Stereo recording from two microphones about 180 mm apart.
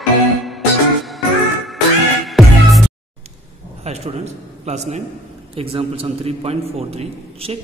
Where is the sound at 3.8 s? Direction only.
35° right (ahead or behind).